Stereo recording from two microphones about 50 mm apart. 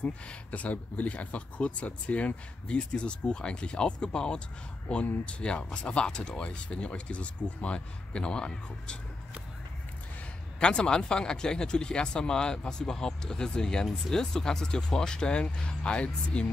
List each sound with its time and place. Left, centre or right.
0.0 s speech: left
10.6 s speech: centre